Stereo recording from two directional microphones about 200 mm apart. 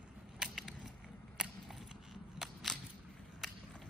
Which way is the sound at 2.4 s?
Centre (ahead or behind).